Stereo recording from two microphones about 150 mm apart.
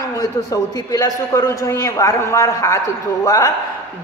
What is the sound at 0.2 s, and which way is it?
Speech, 25° left (ahead or behind).